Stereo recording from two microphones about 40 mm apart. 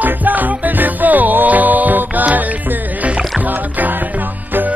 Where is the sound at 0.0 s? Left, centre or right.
Right.